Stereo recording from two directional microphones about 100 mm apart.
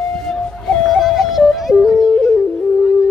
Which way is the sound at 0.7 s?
Centre (ahead or behind).